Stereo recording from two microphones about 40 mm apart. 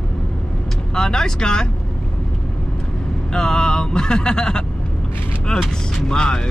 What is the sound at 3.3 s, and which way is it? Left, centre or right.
Speech, centre.